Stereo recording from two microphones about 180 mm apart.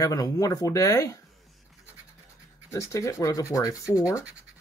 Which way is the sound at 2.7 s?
15° left (ahead or behind).